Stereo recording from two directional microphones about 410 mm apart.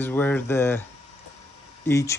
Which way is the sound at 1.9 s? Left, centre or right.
Centre.